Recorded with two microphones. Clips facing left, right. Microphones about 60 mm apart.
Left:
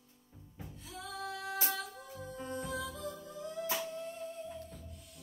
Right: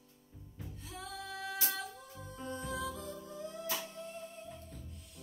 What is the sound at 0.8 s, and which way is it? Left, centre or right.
Music, right.